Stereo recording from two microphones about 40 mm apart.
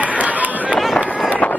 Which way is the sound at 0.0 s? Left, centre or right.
Right.